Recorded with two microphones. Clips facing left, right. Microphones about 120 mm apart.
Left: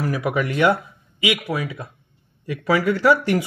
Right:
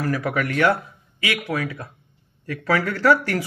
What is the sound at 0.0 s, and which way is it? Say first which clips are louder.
Speech: left 1 dB; 15° left (ahead or behind).